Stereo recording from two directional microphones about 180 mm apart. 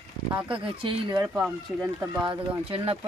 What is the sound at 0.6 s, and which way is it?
Speech, 30° right (ahead or behind).